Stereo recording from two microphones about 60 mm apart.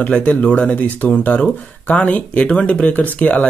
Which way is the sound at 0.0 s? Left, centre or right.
Left.